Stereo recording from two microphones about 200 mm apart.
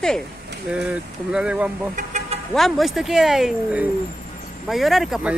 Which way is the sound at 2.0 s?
40° right (ahead or behind).